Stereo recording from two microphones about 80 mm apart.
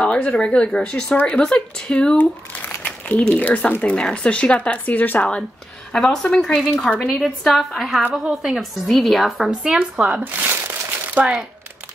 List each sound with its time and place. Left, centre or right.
0.0 s speech: centre
5.9 s speech: centre
9.8 s speech: centre